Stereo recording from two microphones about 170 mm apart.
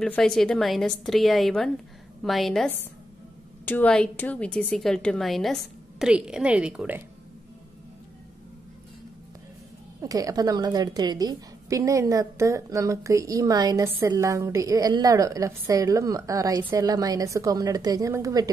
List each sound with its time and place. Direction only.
0.0 s a woman's voice: 5° left (ahead or behind)
10.0 s a woman's voice: 20° right (ahead or behind)